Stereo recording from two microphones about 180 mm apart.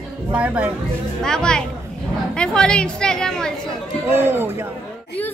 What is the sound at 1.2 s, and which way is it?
A woman's voice, 5° left (ahead or behind).